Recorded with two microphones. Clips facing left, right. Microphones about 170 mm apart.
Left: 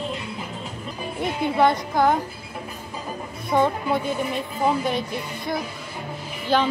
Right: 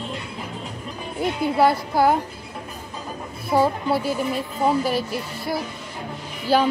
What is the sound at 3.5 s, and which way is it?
Speech, 5° right (ahead or behind).